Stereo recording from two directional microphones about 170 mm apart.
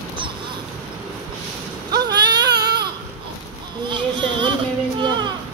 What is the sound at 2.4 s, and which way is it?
Baby cry, 75° right (ahead or behind).